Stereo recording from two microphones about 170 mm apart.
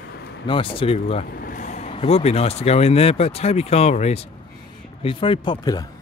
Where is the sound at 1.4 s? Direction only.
55° left (ahead or behind).